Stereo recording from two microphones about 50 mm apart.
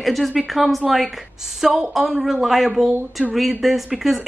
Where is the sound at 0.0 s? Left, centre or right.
Centre.